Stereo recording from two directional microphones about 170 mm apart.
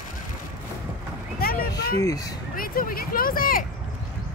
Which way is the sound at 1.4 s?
60° left (ahead or behind).